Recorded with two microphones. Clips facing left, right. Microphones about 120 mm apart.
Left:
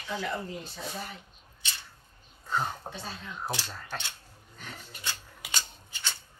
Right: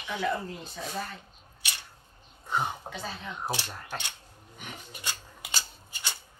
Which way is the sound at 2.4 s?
15° right (ahead or behind).